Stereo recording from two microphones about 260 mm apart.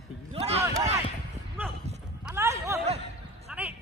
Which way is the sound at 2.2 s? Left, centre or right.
Centre.